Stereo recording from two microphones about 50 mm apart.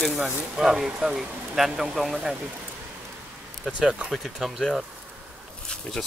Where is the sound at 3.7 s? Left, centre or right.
Centre.